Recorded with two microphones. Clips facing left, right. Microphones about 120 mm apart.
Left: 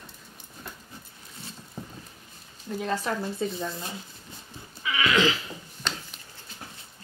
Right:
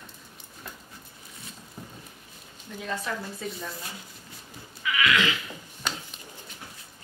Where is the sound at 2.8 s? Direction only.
35° left (ahead or behind).